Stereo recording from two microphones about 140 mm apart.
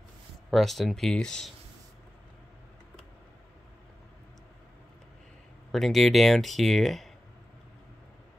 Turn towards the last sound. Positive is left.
turn(degrees=0)  # may be behind; listen again after turning